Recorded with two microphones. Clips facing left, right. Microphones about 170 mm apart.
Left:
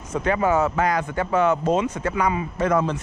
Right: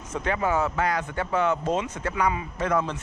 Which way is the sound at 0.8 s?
10° left (ahead or behind).